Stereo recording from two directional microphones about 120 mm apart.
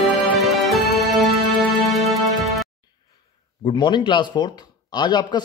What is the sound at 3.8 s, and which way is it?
Speech, 40° left (ahead or behind).